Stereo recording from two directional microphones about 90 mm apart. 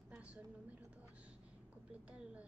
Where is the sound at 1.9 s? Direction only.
15° right (ahead or behind).